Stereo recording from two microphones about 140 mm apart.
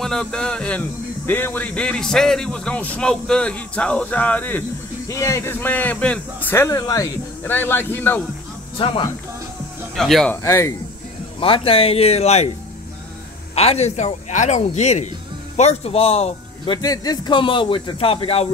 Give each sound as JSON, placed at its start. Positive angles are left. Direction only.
{"t": 0.0, "sound": "speech", "side_deg": 5}
{"t": 5.0, "sound": "speech", "side_deg": 20}
{"t": 8.7, "sound": "a man's voice", "side_deg": 40}
{"t": 9.9, "sound": "speech", "side_deg": 0}
{"t": 10.3, "sound": "speech", "side_deg": 20}
{"t": 11.3, "sound": "speech", "side_deg": 40}
{"t": 13.6, "sound": "speech", "side_deg": 50}
{"t": 16.6, "sound": "a man's voice", "side_deg": 30}